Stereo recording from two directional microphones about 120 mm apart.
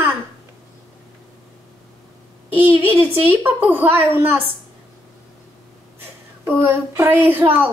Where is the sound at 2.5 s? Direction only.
15° right (ahead or behind).